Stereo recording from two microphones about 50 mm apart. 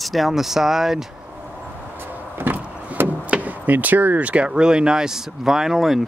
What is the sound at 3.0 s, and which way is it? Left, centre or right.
Speech, right.